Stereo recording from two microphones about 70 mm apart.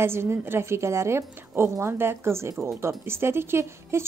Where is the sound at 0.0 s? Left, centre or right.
Right.